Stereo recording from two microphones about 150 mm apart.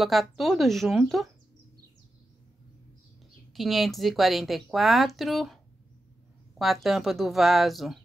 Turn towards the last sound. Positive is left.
turn(degrees=0)  # may be behind; listen again after turning